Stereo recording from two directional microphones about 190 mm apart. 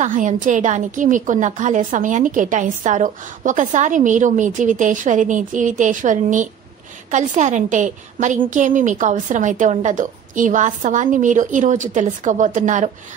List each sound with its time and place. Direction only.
0.0 s a woman's voice: 45° right (ahead or behind)